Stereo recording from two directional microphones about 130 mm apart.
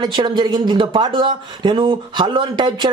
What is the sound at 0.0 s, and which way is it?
Speech, 35° right (ahead or behind).